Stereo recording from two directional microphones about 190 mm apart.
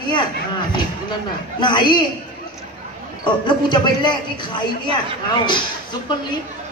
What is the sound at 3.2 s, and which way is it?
A man's voice, 25° left (ahead or behind).